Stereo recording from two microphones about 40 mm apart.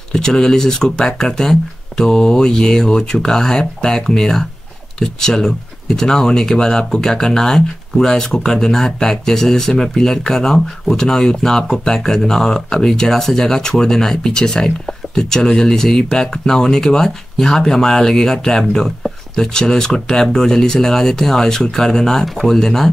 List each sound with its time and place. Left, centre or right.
0.1 s speech: centre